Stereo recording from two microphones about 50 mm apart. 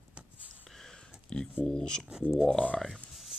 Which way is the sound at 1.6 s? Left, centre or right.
Centre.